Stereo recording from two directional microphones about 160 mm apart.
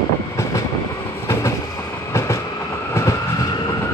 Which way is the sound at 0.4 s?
15° left (ahead or behind).